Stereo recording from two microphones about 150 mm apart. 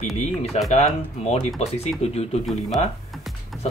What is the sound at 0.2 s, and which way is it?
Speech, 45° left (ahead or behind).